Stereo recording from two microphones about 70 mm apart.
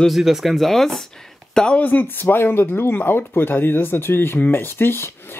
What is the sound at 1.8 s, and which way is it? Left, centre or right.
Speech, left.